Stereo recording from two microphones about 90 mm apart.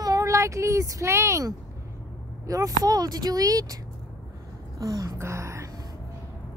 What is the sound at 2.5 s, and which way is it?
Speech, 40° right (ahead or behind).